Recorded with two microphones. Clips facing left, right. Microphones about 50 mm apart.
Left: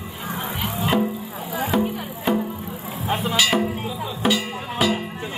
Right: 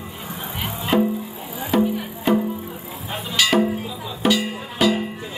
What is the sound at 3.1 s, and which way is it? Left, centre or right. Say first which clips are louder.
Music: left 7 dB; left.